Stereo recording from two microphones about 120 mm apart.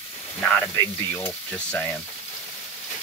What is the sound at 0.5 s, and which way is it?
Speech, 20° left (ahead or behind).